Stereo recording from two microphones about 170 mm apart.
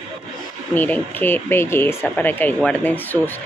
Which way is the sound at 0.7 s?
10° left (ahead or behind).